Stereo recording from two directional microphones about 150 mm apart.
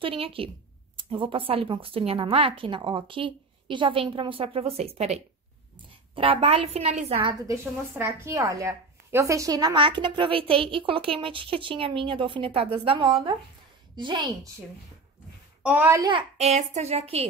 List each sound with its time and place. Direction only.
0.0 s a woman's voice: 35° right (ahead or behind)
8.0 s a woman's voice: 15° right (ahead or behind)
15.6 s a child's voice: 10° right (ahead or behind)
16.0 s a woman's voice: 35° right (ahead or behind)
16.3 s speech: 45° right (ahead or behind)